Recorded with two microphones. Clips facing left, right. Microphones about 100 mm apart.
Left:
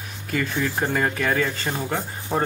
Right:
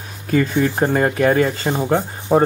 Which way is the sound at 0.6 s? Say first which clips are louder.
Right 7 dB; 25° right (ahead or behind).